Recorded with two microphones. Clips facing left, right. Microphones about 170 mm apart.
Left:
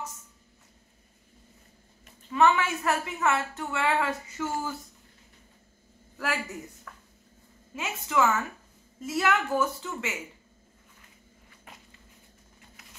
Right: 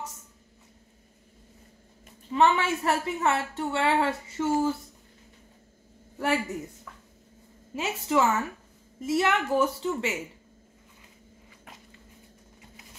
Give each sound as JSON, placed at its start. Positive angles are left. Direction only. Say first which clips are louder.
{"t": 2.3, "sound": "a woman's voice", "louder": "even", "side_deg": -30}
{"t": 6.1, "sound": "a man's voice", "louder": "right 5 dB", "side_deg": -30}
{"t": 7.7, "sound": "speech", "louder": "right 3 dB", "side_deg": -35}